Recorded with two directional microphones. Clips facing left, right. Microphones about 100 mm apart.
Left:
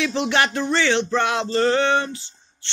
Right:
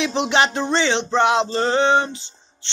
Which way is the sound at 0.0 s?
20° right (ahead or behind).